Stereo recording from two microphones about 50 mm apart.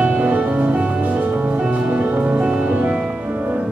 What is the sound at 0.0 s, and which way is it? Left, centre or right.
Music, right.